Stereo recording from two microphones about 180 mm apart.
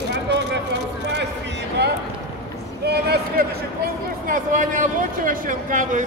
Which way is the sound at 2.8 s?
60° right (ahead or behind).